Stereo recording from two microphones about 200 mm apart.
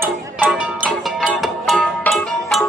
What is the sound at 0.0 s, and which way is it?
Music, 5° right (ahead or behind).